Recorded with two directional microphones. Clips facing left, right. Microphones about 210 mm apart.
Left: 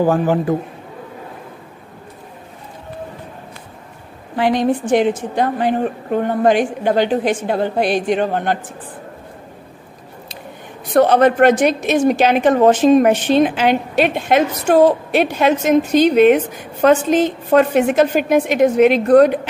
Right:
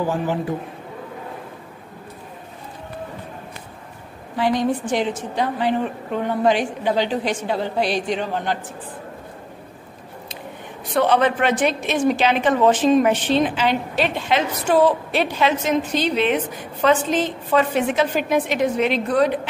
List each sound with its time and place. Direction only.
0.0 s a woman's voice: 50° left (ahead or behind)
4.4 s a woman's voice: 70° left (ahead or behind); by 8.5 s 55° left (ahead or behind)
11.0 s a woman's voice: 45° left (ahead or behind)